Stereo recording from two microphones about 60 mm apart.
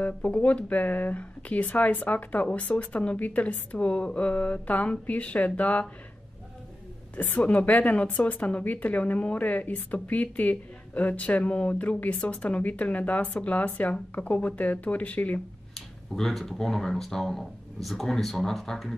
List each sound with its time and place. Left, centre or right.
0.0 s speech: left
7.2 s speech: left
15.7 s speech: centre